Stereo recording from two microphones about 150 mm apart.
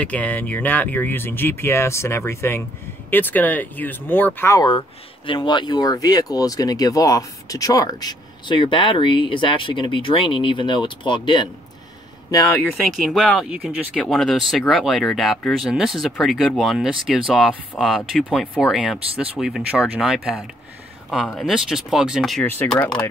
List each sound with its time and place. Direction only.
0.0 s speech: 10° left (ahead or behind)
4.6 s speech: 35° left (ahead or behind)
13.0 s speech: centre (ahead or behind)
13.6 s speech: 10° right (ahead or behind)
14.0 s speech: centre (ahead or behind)
22.6 s speech: 10° left (ahead or behind)